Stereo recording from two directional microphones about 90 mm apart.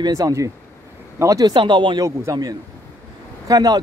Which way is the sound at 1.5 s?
60° right (ahead or behind).